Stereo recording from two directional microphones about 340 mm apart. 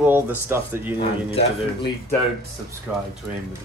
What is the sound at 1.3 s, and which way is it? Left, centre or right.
Speech, centre.